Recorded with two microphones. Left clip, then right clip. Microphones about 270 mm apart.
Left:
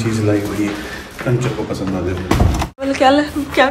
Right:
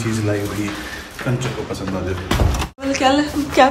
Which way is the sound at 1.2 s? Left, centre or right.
Centre.